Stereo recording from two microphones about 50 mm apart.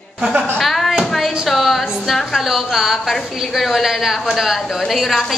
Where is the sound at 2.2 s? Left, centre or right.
Centre.